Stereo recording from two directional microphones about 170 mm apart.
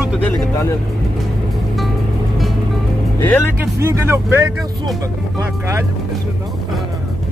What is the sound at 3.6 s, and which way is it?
Speech, 15° right (ahead or behind).